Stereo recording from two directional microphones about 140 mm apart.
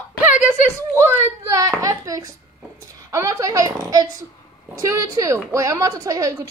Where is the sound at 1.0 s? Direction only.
20° right (ahead or behind).